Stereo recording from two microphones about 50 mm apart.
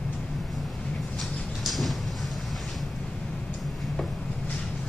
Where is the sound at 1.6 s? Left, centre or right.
Centre.